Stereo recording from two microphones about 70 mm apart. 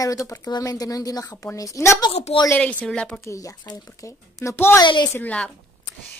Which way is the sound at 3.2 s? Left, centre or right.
Left.